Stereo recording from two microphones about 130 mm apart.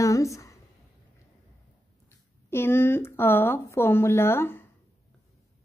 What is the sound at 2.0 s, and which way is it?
Speech, 20° left (ahead or behind).